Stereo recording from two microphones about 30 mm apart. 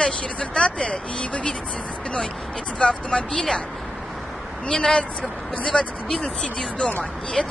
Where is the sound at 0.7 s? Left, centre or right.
Left.